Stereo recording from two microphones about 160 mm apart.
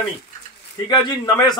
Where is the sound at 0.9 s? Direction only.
30° left (ahead or behind).